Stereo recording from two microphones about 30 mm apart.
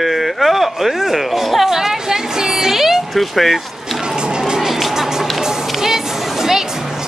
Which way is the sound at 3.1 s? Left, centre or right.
Centre.